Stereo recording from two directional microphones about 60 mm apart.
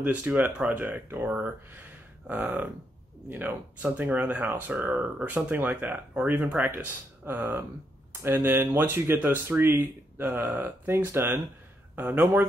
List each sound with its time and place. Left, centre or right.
0.0 s speech: right
0.7 s speech: right
1.8 s a sound: right
3.3 s speech: right
8.1 s a sound: right
8.5 s speech: right